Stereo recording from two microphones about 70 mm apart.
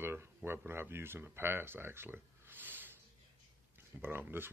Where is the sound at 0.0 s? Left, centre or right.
Right.